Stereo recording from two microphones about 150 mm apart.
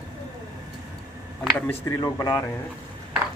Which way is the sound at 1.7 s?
20° left (ahead or behind).